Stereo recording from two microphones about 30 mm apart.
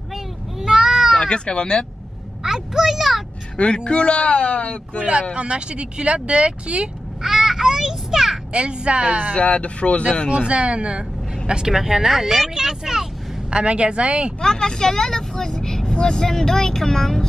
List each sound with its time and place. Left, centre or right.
0.1 s a sound: centre
1.2 s speech: left
2.4 s a child's voice: centre
3.5 s speech: left
5.3 s speech: right
7.2 s a sound: centre
8.5 s speech: right
9.4 s speech: left
10.3 s speech: right
11.7 s speech: centre
13.5 s speech: right
14.4 s speech: left